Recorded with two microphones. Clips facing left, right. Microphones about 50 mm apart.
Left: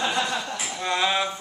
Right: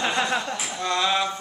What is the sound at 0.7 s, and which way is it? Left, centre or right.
Speech, centre.